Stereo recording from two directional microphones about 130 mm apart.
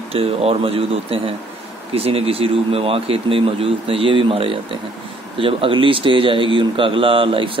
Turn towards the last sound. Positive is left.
turn(degrees=-40)  # may be behind; listen again after turning